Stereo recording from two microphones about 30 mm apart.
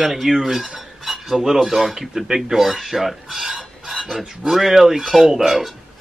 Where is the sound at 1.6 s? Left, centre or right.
Centre.